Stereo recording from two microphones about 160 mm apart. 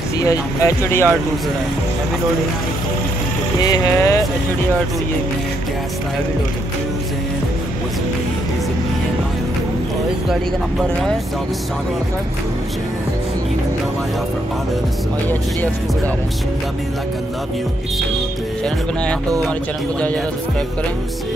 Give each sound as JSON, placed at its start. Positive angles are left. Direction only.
{"t": 0.2, "sound": "speech", "side_deg": 20}
{"t": 3.6, "sound": "speech", "side_deg": 20}